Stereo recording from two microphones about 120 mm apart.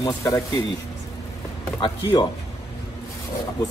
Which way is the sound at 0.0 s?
30° left (ahead or behind).